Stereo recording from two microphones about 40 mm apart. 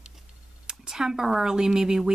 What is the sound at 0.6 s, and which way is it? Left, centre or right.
Speech, centre.